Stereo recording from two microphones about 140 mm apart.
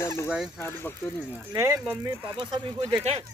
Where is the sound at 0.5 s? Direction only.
15° left (ahead or behind).